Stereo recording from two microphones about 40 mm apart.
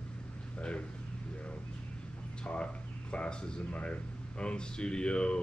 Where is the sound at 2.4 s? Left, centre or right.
Left.